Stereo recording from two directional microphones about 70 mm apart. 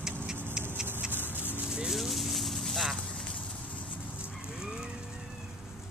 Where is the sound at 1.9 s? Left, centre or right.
Centre.